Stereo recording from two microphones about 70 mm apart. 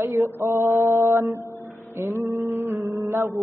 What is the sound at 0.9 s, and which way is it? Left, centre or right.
A man's voice, right.